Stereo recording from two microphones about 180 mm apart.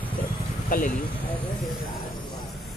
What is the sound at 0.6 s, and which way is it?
Speech, 50° left (ahead or behind).